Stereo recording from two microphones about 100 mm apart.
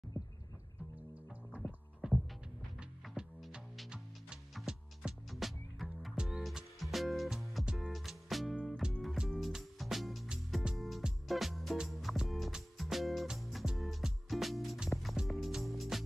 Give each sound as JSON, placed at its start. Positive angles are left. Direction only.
{"t": 1.6, "sound": "music", "side_deg": 30}
{"t": 2.0, "sound": "music", "side_deg": 0}